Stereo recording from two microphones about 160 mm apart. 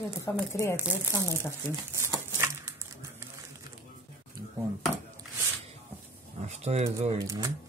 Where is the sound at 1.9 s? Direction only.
15° right (ahead or behind).